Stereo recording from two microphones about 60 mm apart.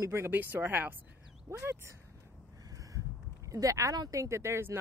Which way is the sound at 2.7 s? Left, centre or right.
Right.